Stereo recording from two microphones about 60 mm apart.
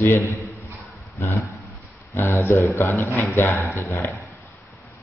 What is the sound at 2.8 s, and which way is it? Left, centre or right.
Speech, left.